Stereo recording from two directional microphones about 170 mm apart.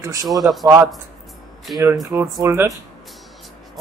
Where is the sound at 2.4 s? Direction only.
20° right (ahead or behind).